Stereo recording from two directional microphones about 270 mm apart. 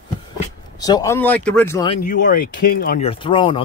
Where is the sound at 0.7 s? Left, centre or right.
Centre.